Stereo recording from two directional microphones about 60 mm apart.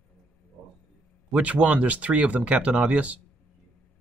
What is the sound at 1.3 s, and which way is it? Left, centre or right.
Speech, right.